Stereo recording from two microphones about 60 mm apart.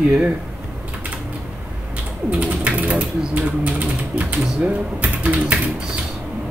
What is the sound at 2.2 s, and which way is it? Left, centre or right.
Pigeon, right.